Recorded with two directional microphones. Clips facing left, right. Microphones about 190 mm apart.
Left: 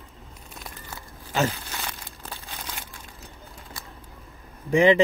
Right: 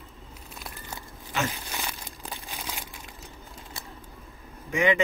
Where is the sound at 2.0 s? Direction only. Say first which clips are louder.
Right 1 dB; 15° right (ahead or behind).